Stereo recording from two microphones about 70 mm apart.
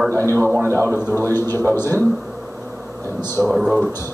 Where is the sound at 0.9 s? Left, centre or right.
Left.